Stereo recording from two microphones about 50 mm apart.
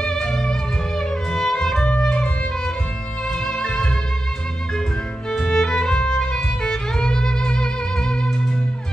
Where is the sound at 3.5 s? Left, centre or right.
Centre.